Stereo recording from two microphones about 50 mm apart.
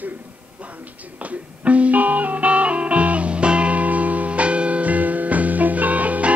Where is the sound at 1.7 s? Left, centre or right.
Right.